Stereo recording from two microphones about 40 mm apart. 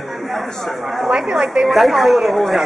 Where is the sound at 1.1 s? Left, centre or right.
Centre.